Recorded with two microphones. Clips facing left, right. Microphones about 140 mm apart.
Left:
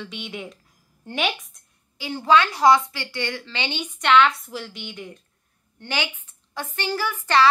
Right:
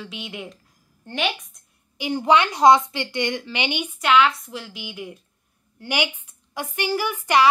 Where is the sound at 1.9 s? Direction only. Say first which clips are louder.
Even; 15° right (ahead or behind).